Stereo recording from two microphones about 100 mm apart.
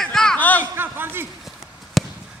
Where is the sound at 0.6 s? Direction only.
20° right (ahead or behind).